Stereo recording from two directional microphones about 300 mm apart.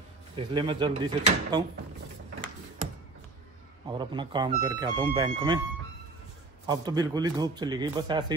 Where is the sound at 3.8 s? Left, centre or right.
Centre.